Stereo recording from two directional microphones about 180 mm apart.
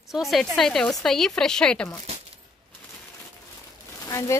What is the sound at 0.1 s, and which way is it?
A woman's voice, centre (ahead or behind).